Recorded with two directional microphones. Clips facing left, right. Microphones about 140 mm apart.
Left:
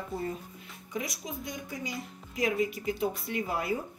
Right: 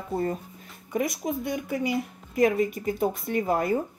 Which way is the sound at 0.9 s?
55° right (ahead or behind).